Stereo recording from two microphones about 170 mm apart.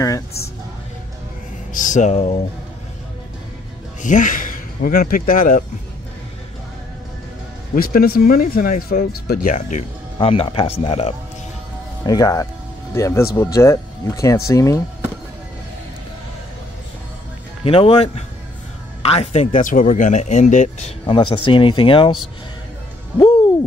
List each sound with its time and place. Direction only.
1.7 s speech: 50° left (ahead or behind)
4.0 s speech: 50° left (ahead or behind)
7.7 s speech: 60° left (ahead or behind)
10.1 s speech: 35° left (ahead or behind)
12.1 s speech: 20° left (ahead or behind)
17.6 s speech: 35° left (ahead or behind)
21.0 s speech: 30° left (ahead or behind)